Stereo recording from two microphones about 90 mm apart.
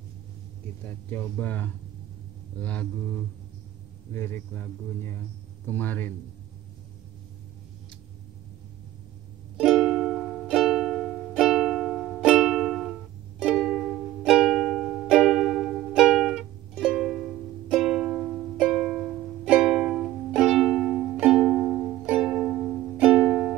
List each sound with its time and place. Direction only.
0.8 s speech: 25° left (ahead or behind)
2.5 s music: 15° left (ahead or behind)
4.1 s speech: 25° left (ahead or behind)
9.6 s music: 5° right (ahead or behind)
21.2 s music: 10° right (ahead or behind)
22.0 s music: 15° right (ahead or behind)
22.6 s music: 5° left (ahead or behind)
22.9 s music: 10° right (ahead or behind)